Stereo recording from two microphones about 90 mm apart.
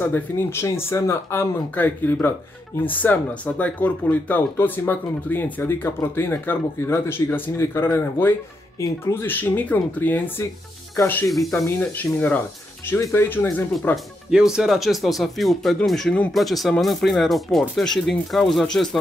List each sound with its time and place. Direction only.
0.0 s speech: 25° left (ahead or behind)
11.2 s speech: centre (ahead or behind)
11.9 s speech: 20° left (ahead or behind)
13.9 s speech: 5° right (ahead or behind)